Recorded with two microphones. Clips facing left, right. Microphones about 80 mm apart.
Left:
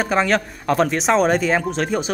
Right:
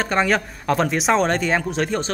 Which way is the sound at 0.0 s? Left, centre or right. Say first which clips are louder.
Left 1 dB; centre.